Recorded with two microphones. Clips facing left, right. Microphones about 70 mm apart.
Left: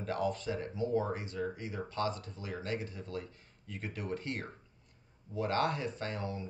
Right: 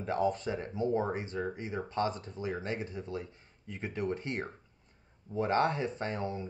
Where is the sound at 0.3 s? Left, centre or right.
Right.